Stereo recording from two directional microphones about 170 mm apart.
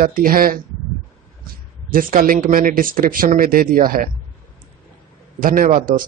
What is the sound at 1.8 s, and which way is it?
Speech, 55° right (ahead or behind).